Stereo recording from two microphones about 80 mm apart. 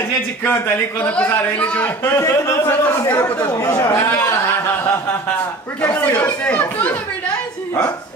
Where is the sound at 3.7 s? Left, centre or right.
Left.